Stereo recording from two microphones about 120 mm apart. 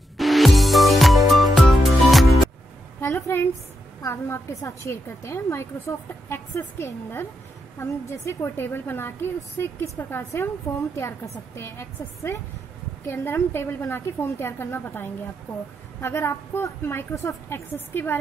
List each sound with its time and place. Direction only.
0.2 s music: centre (ahead or behind)
3.0 s a sound: 25° left (ahead or behind)
4.0 s a woman's voice: 20° left (ahead or behind)
11.5 s a woman's voice: 20° left (ahead or behind)